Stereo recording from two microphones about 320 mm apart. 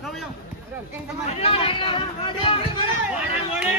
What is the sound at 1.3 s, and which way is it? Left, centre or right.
Speech, centre.